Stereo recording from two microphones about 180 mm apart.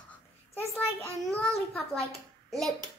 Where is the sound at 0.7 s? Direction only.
15° left (ahead or behind).